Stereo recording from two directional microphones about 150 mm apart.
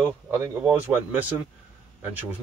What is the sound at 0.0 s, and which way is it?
Speech, 15° right (ahead or behind).